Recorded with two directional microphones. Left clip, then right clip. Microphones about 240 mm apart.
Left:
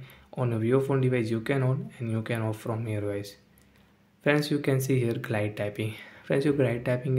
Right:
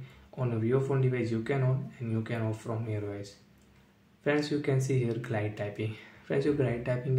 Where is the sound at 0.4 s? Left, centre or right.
Left.